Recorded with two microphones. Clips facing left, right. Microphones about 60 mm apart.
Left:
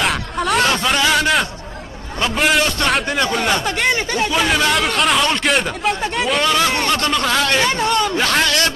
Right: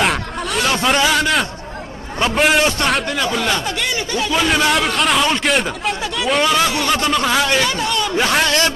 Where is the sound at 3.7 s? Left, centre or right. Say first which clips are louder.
Left 3 dB; left.